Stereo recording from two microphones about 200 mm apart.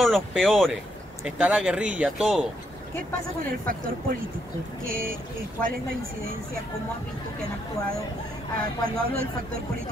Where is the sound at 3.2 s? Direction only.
45° right (ahead or behind).